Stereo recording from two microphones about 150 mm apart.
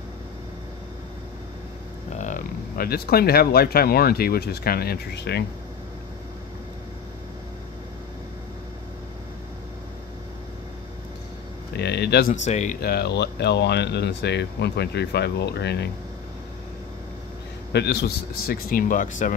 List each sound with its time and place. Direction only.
2.1 s a sound: 55° left (ahead or behind)
2.8 s speech: 90° left
11.7 s a sound: 90° left
12.4 s speech: 50° left (ahead or behind)
12.8 s speech: 90° left
17.7 s speech: 90° left; by 19.3 s 60° left (ahead or behind)